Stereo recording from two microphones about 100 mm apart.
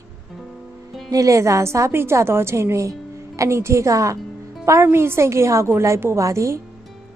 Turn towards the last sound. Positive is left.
turn(degrees=-30)  # may be behind; listen again after turning